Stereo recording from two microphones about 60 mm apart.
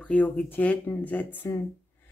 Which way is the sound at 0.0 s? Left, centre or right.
Left.